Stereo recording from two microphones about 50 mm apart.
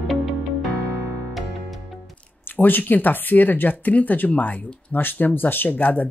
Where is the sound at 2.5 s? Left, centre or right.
Left.